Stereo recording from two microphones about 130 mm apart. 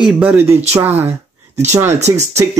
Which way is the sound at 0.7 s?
15° right (ahead or behind).